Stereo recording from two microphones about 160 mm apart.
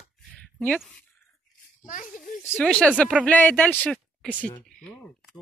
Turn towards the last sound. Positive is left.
turn(degrees=0)  # may be behind; listen again after turning